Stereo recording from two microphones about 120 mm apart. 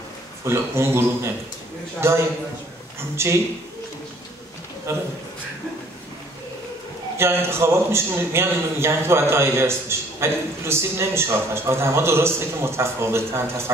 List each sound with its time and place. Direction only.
0.5 s a man's voice: 20° right (ahead or behind)
4.9 s a man's voice: 20° right (ahead or behind)
7.2 s a man's voice: 20° right (ahead or behind)